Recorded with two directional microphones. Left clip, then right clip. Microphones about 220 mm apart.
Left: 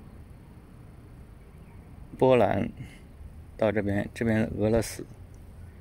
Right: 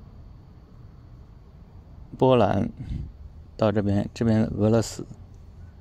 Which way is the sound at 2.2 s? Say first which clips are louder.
Right 2 dB; 10° right (ahead or behind).